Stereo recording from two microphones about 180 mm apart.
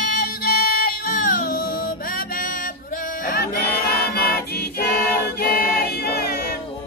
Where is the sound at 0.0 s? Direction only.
55° left (ahead or behind).